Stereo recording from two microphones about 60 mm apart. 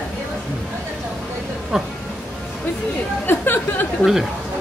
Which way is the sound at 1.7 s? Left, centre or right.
Centre.